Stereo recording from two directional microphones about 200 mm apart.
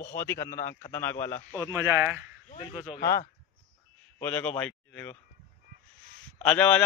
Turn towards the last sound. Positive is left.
turn(degrees=5)  # may be behind; listen again after turning